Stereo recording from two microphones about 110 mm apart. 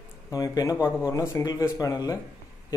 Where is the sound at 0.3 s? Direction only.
35° left (ahead or behind).